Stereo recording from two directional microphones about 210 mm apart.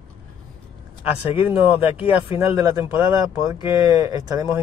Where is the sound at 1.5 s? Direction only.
5° right (ahead or behind).